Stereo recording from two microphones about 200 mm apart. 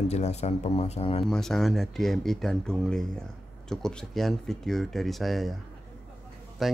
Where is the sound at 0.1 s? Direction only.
35° left (ahead or behind).